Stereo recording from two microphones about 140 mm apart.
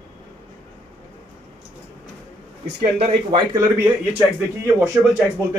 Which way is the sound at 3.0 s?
40° right (ahead or behind).